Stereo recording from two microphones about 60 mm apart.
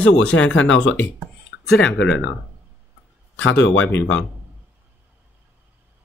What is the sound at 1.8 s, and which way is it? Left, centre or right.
Speech, centre.